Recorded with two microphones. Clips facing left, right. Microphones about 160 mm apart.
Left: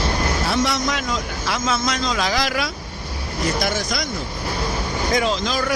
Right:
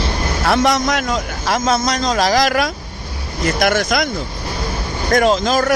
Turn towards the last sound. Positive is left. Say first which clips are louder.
# right 7 dB
turn(degrees=-45)  # may be behind; listen again after turning